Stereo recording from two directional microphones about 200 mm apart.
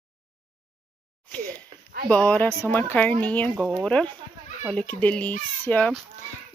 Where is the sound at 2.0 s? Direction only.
10° left (ahead or behind).